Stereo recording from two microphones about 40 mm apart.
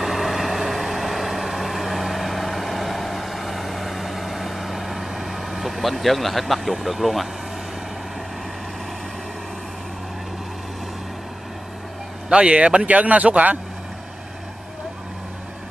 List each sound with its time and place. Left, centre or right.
0.0 s vehicle: centre
12.3 s speech: right